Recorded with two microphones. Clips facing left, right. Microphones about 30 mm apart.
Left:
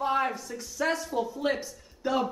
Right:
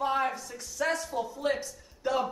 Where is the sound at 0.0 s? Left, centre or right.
Centre.